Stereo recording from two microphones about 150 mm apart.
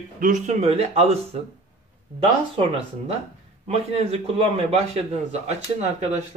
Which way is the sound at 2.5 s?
40° right (ahead or behind).